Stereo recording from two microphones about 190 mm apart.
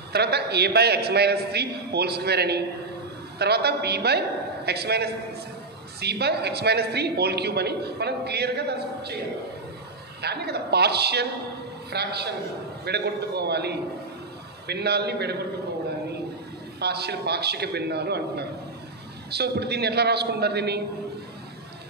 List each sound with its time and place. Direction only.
0.1 s a man's voice: 60° right (ahead or behind)
10.2 s a man's voice: 60° right (ahead or behind)
16.8 s a man's voice: 60° right (ahead or behind)